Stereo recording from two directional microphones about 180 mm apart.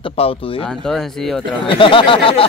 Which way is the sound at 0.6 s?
5° left (ahead or behind).